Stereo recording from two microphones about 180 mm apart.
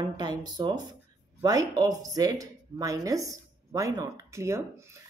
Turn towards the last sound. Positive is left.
turn(degrees=-15)  # may be behind; listen again after turning